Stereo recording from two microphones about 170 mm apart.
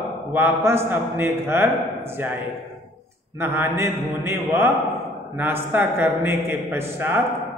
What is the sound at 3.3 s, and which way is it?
A man's voice, 15° right (ahead or behind).